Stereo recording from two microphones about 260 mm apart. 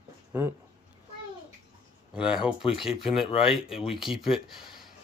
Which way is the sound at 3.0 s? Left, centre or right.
Left.